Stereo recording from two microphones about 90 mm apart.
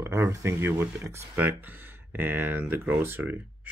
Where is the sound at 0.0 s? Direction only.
30° right (ahead or behind).